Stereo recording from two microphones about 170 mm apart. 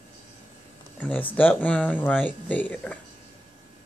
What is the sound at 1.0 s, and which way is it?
Speech, 10° left (ahead or behind).